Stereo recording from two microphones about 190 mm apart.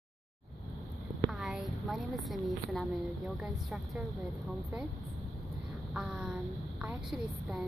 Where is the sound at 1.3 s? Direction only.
Centre (ahead or behind).